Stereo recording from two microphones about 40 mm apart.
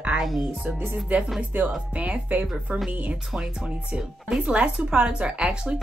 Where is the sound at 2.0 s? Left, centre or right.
Right.